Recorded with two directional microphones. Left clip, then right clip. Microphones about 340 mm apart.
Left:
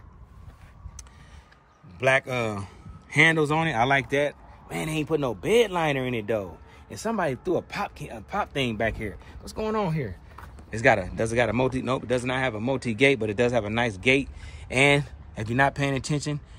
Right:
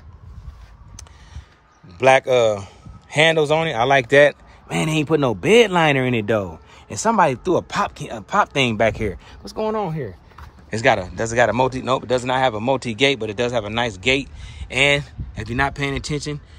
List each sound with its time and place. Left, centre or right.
2.0 s a man's voice: centre